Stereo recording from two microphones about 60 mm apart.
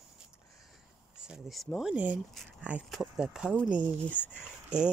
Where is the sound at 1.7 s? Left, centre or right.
Left.